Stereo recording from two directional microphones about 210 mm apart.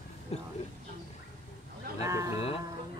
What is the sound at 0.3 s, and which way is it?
Speech, 30° left (ahead or behind).